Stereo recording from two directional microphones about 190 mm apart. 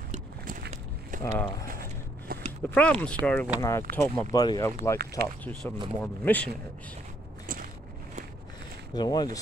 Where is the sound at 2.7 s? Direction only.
5° left (ahead or behind).